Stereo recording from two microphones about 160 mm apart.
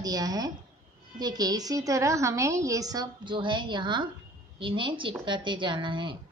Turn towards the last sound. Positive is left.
turn(degrees=-30)  # may be behind; listen again after turning